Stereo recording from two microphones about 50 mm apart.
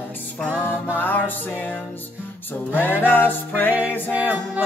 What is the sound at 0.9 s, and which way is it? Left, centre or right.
Music, left.